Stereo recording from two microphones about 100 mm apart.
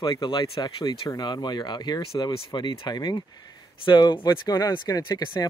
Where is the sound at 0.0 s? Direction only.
45° left (ahead or behind).